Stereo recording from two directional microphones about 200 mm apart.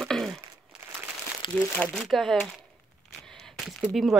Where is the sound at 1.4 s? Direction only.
25° left (ahead or behind).